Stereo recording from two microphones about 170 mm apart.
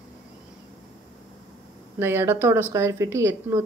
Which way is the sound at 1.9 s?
15° right (ahead or behind).